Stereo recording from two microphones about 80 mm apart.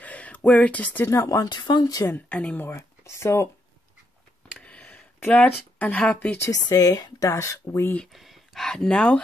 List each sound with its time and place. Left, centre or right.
0.0 s a sound: centre
1.0 s speech: left
1.5 s speech: left
2.0 s a woman's voice: left
2.6 s speech: left
4.6 s a sound: centre
5.2 s speech: centre
6.5 s speech: left
8.1 s speech: centre